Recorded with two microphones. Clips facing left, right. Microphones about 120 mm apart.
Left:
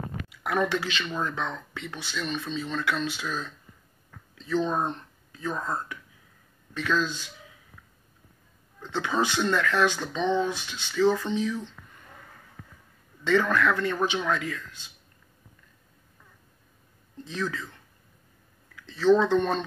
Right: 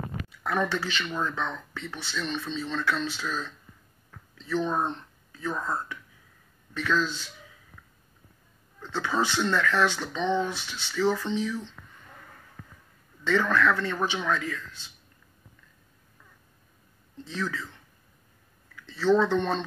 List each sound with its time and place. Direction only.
0.4 s speech: 15° left (ahead or behind)
8.8 s speech: 15° left (ahead or behind)
13.2 s speech: 15° left (ahead or behind)
17.2 s speech: 15° left (ahead or behind)
18.9 s speech: 15° left (ahead or behind)